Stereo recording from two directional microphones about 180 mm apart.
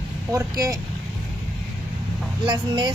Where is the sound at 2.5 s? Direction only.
25° right (ahead or behind).